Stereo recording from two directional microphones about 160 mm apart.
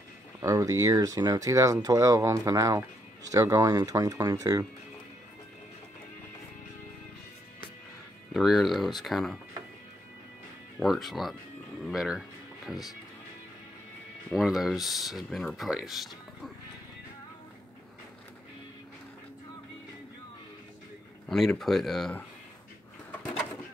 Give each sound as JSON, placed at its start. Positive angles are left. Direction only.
{"t": 0.4, "sound": "speech", "side_deg": -20}
{"t": 8.3, "sound": "speech", "side_deg": 0}
{"t": 10.8, "sound": "speech", "side_deg": 0}
{"t": 14.3, "sound": "speech", "side_deg": 0}
{"t": 21.3, "sound": "speech", "side_deg": 0}